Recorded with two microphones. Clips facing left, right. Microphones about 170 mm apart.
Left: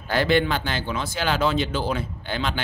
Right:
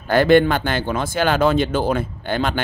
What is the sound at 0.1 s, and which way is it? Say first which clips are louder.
Speech: right 7 dB; 50° right (ahead or behind).